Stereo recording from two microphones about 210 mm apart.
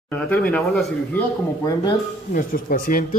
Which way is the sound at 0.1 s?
5° left (ahead or behind).